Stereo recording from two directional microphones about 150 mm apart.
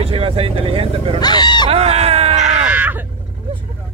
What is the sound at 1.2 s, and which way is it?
Speech, 30° left (ahead or behind).